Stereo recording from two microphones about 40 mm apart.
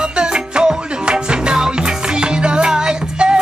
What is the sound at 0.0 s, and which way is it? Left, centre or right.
Music, right.